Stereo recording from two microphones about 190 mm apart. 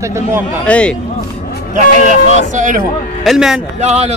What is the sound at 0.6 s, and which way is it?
Speech, 5° left (ahead or behind).